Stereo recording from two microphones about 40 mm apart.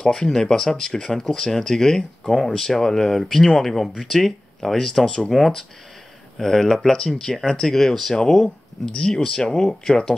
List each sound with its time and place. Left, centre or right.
0.0 s speech: centre
5.0 s speech: left
5.3 s speech: centre
8.8 s speech: centre